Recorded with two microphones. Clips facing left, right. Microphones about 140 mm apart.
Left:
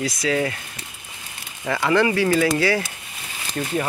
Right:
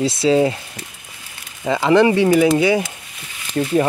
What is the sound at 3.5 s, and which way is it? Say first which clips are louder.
Speech: right 8 dB; 40° right (ahead or behind).